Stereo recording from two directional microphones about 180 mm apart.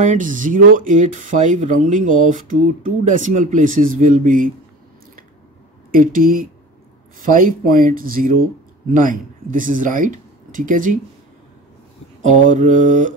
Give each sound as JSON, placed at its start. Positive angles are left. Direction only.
{"t": 0.0, "sound": "speech", "side_deg": -45}
{"t": 5.9, "sound": "speech", "side_deg": -50}
{"t": 12.2, "sound": "mantra", "side_deg": -40}